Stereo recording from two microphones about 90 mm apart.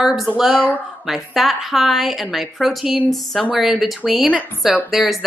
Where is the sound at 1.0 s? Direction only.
Centre (ahead or behind).